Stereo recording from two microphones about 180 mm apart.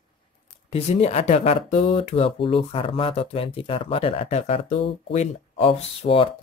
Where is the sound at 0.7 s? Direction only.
35° left (ahead or behind).